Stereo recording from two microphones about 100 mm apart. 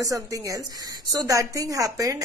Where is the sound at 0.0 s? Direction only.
35° right (ahead or behind).